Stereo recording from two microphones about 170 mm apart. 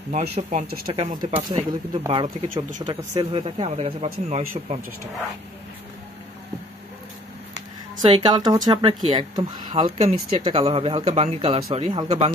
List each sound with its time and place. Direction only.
0.1 s speech: 40° right (ahead or behind)
8.0 s speech: 30° right (ahead or behind)
9.9 s speech: 40° right (ahead or behind)
12.0 s speech: 25° right (ahead or behind)